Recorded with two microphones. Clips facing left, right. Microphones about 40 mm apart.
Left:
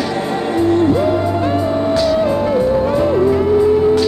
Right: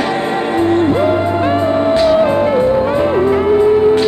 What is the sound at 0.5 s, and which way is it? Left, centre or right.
Music, right.